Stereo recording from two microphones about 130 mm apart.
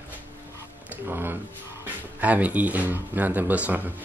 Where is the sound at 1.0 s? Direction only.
15° right (ahead or behind).